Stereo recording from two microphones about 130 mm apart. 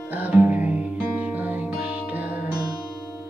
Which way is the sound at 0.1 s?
10° right (ahead or behind).